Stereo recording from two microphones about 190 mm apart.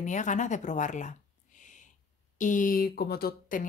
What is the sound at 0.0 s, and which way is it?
Speech, 40° left (ahead or behind).